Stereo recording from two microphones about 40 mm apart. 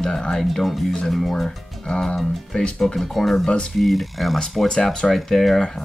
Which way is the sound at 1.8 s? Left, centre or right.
Centre.